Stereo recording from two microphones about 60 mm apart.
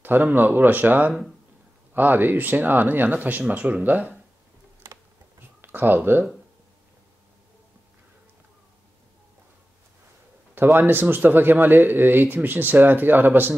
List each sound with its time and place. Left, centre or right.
0.0 s speech: right
5.6 s speech: right
10.5 s speech: right